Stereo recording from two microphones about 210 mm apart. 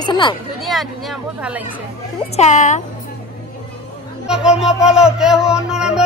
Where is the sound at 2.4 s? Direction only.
35° left (ahead or behind).